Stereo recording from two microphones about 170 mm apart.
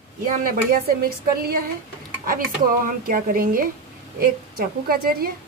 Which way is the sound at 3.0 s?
55° right (ahead or behind).